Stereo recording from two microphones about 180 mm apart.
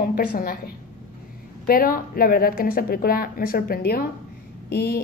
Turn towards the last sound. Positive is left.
turn(degrees=60)  # may be behind; listen again after turning